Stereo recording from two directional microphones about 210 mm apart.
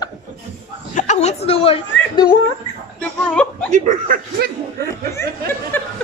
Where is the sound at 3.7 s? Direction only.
35° right (ahead or behind).